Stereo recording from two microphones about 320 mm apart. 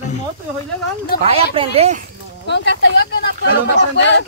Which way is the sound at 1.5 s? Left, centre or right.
Centre.